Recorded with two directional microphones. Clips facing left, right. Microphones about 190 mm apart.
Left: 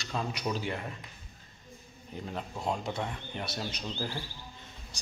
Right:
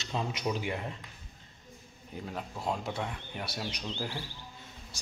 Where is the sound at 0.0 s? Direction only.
20° right (ahead or behind).